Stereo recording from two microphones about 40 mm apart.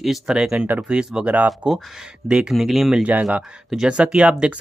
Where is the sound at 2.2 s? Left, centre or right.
Centre.